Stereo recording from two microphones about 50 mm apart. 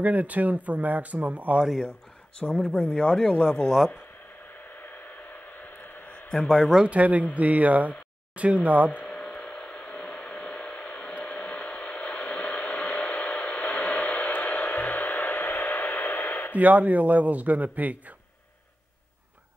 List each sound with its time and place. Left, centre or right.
0.0 s speech: right
2.7 s speech: left
4.8 s a sound: left
6.3 s speech: centre
6.9 s speech: right
9.0 s a sound: left
11.2 s hair dryer: left
16.5 s speech: right